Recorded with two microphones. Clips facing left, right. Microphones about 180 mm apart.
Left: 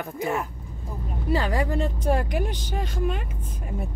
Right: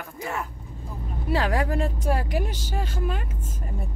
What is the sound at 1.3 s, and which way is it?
Speech, 5° right (ahead or behind).